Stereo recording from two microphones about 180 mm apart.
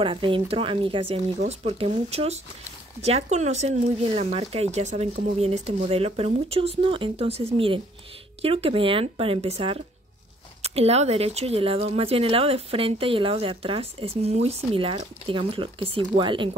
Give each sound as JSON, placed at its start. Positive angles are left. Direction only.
{"t": 0.0, "sound": "speech", "side_deg": -30}